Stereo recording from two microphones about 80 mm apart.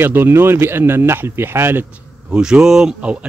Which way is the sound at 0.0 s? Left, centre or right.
Right.